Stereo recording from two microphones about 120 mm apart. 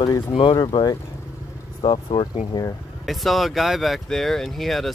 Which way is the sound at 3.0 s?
Centre (ahead or behind).